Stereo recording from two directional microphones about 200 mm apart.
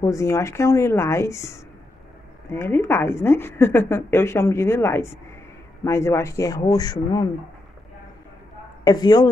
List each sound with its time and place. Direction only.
0.0 s a woman's voice: 15° left (ahead or behind)
8.8 s speech: 20° left (ahead or behind)